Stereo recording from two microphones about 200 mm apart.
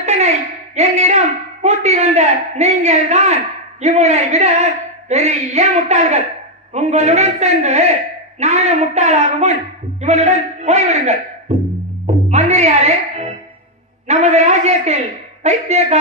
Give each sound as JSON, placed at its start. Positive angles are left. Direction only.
{"t": 0.0, "sound": "a man's voice", "side_deg": -35}
{"t": 12.3, "sound": "music", "side_deg": -35}
{"t": 14.0, "sound": "a man's voice", "side_deg": -35}